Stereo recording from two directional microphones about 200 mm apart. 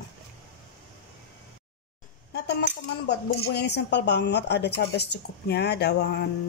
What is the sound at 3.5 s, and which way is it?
Speech, 55° left (ahead or behind).